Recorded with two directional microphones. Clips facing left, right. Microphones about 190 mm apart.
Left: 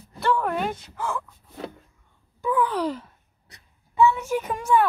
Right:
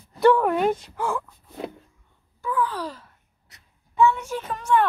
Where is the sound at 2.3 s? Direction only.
20° left (ahead or behind).